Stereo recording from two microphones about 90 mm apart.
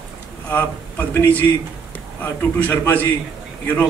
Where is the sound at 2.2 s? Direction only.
20° left (ahead or behind).